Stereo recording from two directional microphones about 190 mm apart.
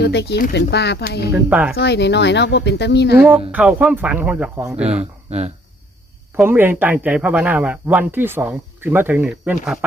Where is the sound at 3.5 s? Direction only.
5° right (ahead or behind).